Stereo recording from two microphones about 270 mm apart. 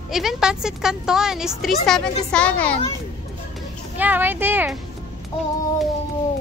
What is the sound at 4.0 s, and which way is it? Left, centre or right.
Speech, centre.